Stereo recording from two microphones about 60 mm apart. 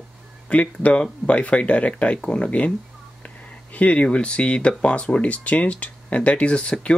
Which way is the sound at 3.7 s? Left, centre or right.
Left.